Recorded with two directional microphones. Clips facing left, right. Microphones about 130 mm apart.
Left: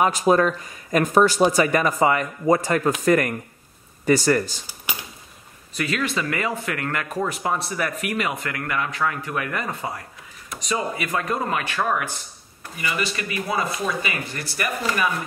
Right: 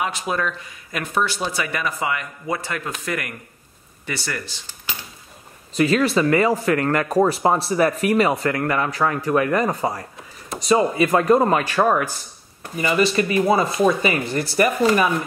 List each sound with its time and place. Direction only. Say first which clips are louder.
0.0 s speech: left 6 dB; 40° left (ahead or behind)
5.8 s speech: right 8 dB; 35° right (ahead or behind)